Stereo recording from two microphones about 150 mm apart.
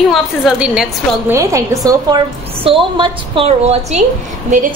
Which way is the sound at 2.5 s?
40° right (ahead or behind).